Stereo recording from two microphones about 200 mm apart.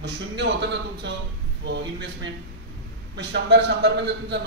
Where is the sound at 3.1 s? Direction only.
60° right (ahead or behind).